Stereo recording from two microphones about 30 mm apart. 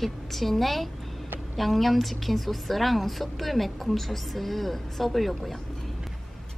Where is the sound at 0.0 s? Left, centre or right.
Centre.